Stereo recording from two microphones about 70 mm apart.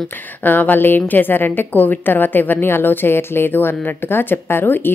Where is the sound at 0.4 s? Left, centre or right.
Left.